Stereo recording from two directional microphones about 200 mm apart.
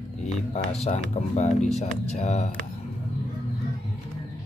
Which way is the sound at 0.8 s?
35° left (ahead or behind).